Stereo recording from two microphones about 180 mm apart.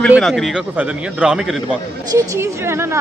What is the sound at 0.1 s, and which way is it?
A man's voice, centre (ahead or behind).